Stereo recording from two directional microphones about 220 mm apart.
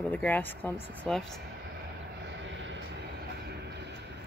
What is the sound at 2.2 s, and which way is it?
Vehicle, 55° right (ahead or behind).